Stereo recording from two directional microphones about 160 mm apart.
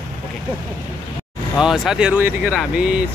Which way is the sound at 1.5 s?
5° right (ahead or behind).